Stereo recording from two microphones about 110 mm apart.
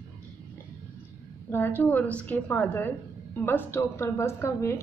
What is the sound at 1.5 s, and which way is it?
A woman's voice, 20° left (ahead or behind).